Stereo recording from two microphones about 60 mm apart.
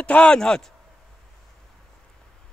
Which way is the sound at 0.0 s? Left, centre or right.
Centre.